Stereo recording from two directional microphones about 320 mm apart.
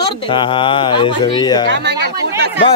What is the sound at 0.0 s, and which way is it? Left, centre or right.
A man's voice, centre.